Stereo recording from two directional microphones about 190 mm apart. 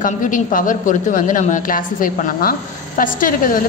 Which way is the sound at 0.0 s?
45° left (ahead or behind).